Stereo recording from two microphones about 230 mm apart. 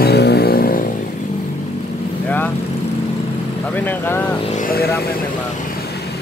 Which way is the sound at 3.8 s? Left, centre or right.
Centre.